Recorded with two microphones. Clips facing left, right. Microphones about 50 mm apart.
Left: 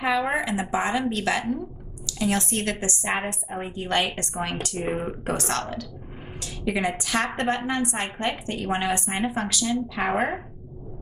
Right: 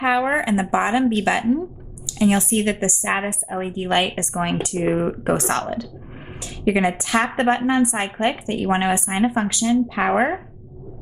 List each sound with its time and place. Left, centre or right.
0.4 s a woman's voice: centre